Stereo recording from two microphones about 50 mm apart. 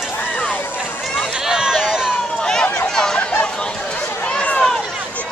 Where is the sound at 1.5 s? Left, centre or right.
Centre.